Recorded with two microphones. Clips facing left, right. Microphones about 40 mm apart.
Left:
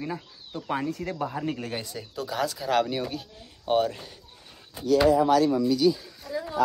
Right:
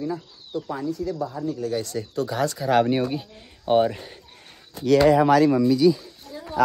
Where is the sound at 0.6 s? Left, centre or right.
Left.